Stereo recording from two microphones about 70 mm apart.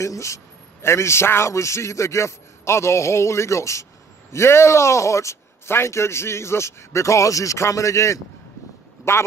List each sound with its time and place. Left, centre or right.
0.0 s a man's voice: left